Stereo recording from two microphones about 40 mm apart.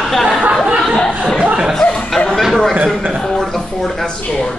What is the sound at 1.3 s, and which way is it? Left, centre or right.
Speech, right.